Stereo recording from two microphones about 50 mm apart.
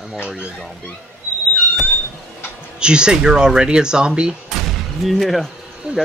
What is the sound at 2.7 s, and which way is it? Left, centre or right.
Speech, centre.